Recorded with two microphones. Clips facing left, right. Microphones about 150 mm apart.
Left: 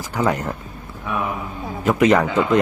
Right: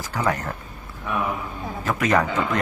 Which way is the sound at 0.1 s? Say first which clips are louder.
Left 4 dB; 20° left (ahead or behind).